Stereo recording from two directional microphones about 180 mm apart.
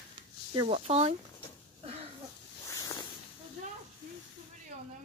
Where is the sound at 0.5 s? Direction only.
35° right (ahead or behind).